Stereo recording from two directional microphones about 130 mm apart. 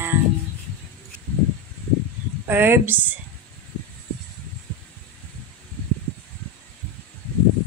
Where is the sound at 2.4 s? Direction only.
15° right (ahead or behind).